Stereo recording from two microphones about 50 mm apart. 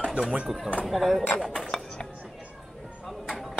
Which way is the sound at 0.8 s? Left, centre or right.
Centre.